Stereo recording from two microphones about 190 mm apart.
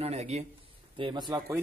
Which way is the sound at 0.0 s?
35° right (ahead or behind).